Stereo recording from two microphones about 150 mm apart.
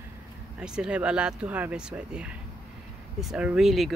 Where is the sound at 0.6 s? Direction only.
5° right (ahead or behind).